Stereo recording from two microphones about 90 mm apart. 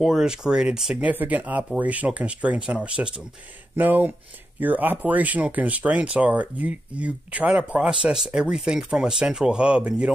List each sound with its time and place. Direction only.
0.0 s speech: 5° right (ahead or behind)
1.0 s speech: 20° right (ahead or behind)